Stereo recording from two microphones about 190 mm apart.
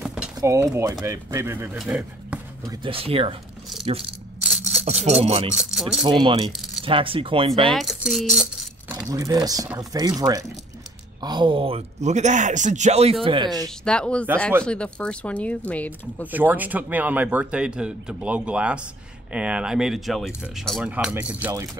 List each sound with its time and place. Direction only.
0.0 s a sound: 5° right (ahead or behind)
0.4 s speech: 15° right (ahead or behind)
4.4 s a sound: centre (ahead or behind)
4.8 s speech: 35° right (ahead or behind)
5.6 s speech: centre (ahead or behind)
6.0 s speech: 25° right (ahead or behind)
7.7 s speech: centre (ahead or behind); by 13.7 s 20° right (ahead or behind)
13.8 s speech: 5° left (ahead or behind)
16.3 s speech: 10° right (ahead or behind)